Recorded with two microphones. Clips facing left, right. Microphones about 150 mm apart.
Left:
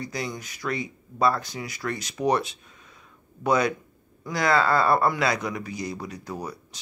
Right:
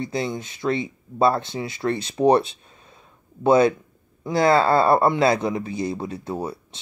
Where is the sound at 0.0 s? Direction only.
25° right (ahead or behind).